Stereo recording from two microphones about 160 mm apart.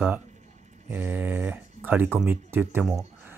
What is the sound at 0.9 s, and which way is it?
Speech, 10° right (ahead or behind).